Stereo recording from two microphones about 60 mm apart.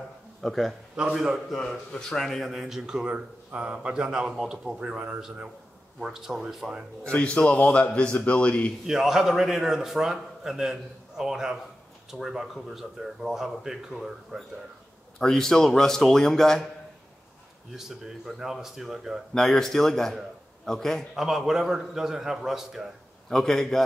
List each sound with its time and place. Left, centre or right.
0.4 s speech: centre
0.9 s a man's voice: centre
1.6 s speech: centre
2.5 s a man's voice: centre
5.9 s a man's voice: centre
7.1 s a man's voice: centre
8.8 s a man's voice: centre
15.1 s a man's voice: centre
17.7 s a man's voice: centre
19.3 s a man's voice: centre
21.1 s a man's voice: centre
23.3 s a man's voice: centre